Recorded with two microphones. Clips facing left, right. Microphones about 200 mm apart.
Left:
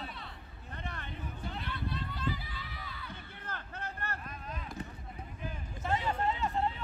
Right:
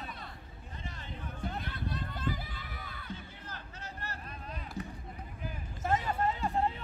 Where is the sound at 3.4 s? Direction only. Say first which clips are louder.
Left 4 dB; 55° left (ahead or behind).